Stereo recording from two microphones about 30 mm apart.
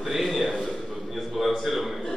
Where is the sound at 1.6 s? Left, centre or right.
Centre.